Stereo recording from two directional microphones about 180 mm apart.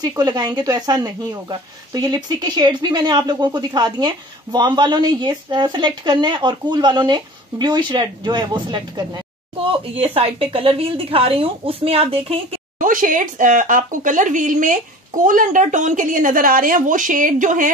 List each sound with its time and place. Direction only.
0.0 s speech: 20° right (ahead or behind)
12.7 s speech: 50° right (ahead or behind)